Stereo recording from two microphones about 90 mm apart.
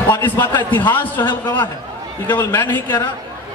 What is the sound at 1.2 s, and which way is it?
Speech, 55° left (ahead or behind).